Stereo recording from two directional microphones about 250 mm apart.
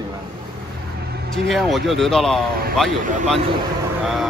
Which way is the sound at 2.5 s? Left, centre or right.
Right.